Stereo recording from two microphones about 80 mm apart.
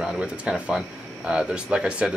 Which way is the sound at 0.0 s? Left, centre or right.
Centre.